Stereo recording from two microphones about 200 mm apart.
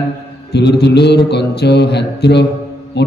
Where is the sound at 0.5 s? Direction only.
55° left (ahead or behind).